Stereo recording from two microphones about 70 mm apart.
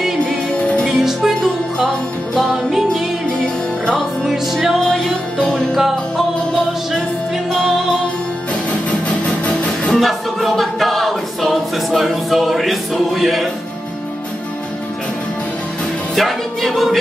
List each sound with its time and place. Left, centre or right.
0.0 s music: centre
5.4 s music: centre
5.8 s music: centre
9.2 s music: centre
9.9 s a capella: centre
16.2 s music: centre